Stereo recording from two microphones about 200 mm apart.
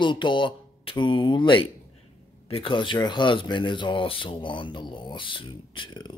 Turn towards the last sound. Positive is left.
turn(degrees=20)  # may be behind; listen again after turning